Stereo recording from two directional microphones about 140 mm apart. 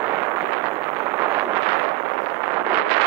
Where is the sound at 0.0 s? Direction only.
15° right (ahead or behind).